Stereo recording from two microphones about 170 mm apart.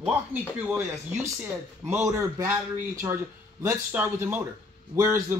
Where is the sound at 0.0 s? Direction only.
10° right (ahead or behind).